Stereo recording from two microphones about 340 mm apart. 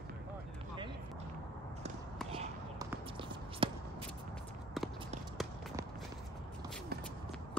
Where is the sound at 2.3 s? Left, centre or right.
Centre.